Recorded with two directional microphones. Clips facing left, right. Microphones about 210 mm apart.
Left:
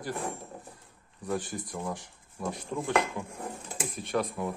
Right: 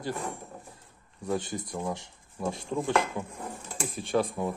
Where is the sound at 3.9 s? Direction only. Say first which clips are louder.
Right 3 dB; 30° right (ahead or behind).